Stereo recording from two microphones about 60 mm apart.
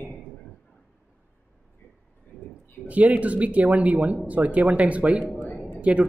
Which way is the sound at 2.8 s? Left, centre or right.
Right.